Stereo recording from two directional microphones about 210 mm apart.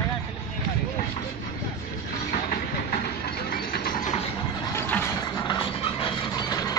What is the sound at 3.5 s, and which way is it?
Engine, 45° left (ahead or behind).